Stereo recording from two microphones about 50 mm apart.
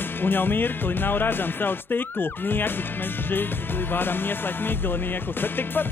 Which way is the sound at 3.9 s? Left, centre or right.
Left.